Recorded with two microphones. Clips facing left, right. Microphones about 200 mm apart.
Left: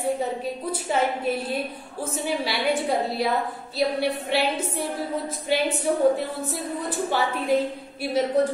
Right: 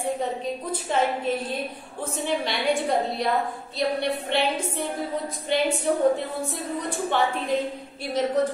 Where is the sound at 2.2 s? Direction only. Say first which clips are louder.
Even; 5° left (ahead or behind).